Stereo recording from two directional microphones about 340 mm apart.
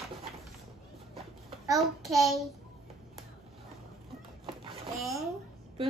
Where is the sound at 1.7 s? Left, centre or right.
Centre.